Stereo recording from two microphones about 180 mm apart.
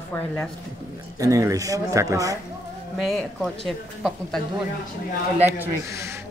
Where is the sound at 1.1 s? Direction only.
20° right (ahead or behind).